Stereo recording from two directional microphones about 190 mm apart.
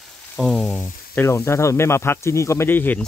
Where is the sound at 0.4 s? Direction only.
5° left (ahead or behind).